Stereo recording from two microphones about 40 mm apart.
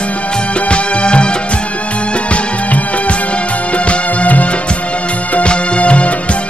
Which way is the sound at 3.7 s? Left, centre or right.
Left.